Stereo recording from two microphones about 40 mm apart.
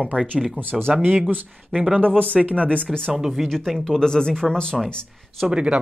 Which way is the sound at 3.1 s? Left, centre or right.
Centre.